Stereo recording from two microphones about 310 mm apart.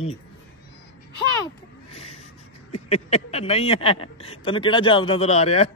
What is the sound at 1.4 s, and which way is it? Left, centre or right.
Vehicle, centre.